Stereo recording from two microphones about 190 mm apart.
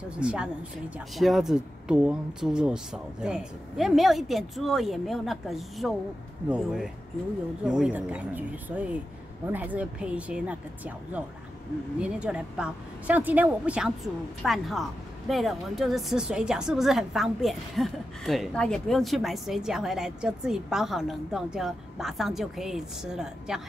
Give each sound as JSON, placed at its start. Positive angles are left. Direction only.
{"t": 0.2, "sound": "a woman's voice", "side_deg": -5}